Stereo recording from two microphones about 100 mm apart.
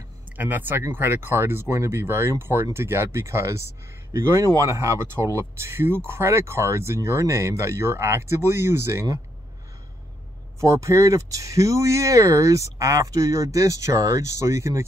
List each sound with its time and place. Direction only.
0.4 s speech: 20° right (ahead or behind)
10.6 s speech: 30° right (ahead or behind)